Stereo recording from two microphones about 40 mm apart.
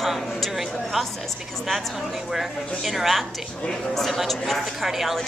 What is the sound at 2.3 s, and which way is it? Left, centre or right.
A woman's voice, centre.